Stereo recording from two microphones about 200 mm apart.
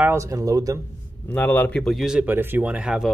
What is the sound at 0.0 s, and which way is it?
Speech, 15° right (ahead or behind).